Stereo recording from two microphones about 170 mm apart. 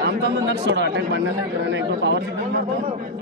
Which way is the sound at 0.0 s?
90° right.